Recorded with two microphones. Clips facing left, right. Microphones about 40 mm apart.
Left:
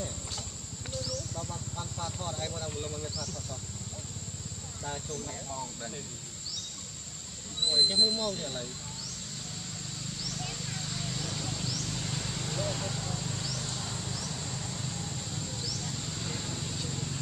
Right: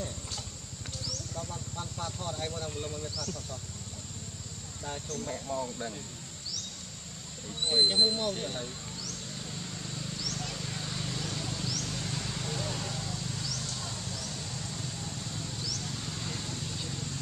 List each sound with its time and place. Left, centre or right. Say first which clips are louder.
1.0 s snake: right 2 dB; centre
4.8 s speech: even; centre
5.2 s speech: right 4 dB; centre
7.7 s speech: right 1 dB; centre
9.6 s vehicle: right 2 dB; centre
10.1 s a sound: even; centre
14.1 s vehicle: left 1 dB; centre